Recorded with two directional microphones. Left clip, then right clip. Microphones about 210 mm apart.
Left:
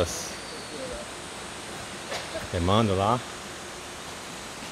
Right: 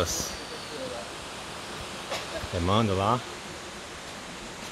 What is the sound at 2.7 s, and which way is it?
Speech, 15° left (ahead or behind).